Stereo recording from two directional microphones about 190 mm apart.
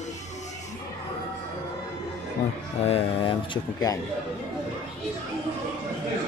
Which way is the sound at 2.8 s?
30° left (ahead or behind).